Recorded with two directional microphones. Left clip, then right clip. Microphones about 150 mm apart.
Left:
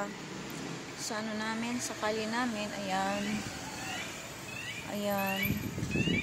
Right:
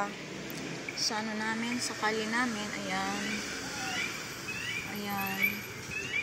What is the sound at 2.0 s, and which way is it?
Speech, 25° left (ahead or behind).